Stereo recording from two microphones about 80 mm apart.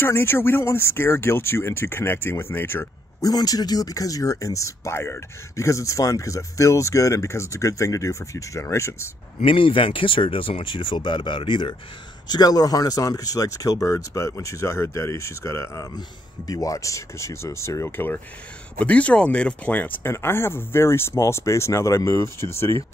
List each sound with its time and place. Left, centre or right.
0.0 s speech: left
3.2 s speech: left
9.5 s speech: left
12.3 s speech: left; by 20.0 s centre
20.0 s speech: left